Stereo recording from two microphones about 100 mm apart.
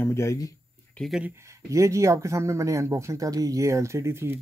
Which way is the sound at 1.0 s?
15° left (ahead or behind).